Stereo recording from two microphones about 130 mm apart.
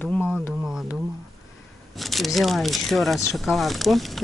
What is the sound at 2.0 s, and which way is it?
Speech, centre (ahead or behind).